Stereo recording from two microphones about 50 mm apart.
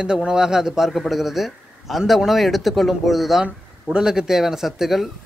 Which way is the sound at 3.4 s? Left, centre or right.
Centre.